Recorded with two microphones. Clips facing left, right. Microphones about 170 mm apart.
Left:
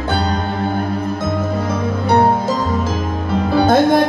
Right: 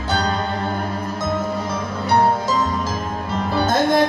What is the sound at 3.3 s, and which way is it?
Music, 55° left (ahead or behind).